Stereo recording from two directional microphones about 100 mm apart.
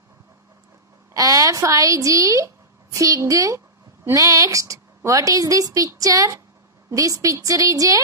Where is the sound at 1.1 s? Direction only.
35° right (ahead or behind).